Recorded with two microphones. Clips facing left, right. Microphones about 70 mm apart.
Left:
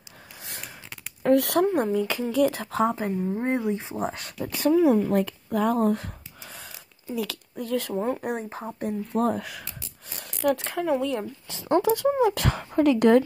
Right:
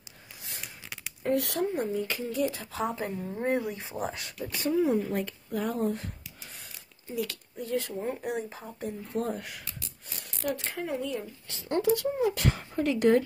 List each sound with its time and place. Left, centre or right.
1.2 s speech: left
2.4 s speech: left
2.9 s speech: left
4.1 s speech: left
4.4 s speech: left
7.5 s speech: left
8.3 s speech: left
8.8 s speech: left
12.2 s speech: left